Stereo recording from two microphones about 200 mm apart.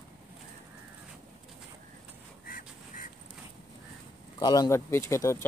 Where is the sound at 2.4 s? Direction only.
45° left (ahead or behind).